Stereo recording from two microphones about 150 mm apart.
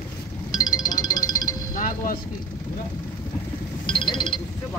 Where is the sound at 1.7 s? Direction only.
65° left (ahead or behind).